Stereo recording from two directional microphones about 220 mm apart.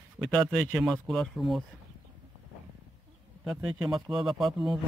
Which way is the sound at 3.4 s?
Centre (ahead or behind).